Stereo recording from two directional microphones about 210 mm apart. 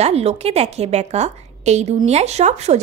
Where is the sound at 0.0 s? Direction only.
30° right (ahead or behind).